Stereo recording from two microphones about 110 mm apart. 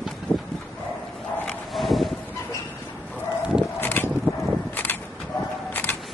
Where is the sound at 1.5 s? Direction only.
Centre (ahead or behind).